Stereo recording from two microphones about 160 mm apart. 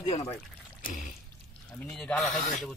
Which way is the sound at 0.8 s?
55° left (ahead or behind).